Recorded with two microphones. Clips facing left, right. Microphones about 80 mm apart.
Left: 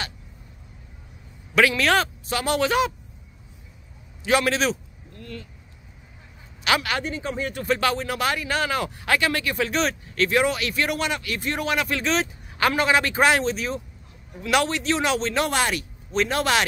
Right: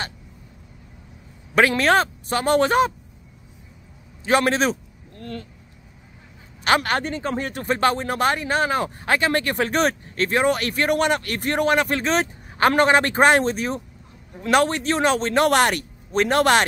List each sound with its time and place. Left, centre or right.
1.5 s speech: right
4.2 s a man's voice: right
6.6 s speech: right
9.4 s speech: right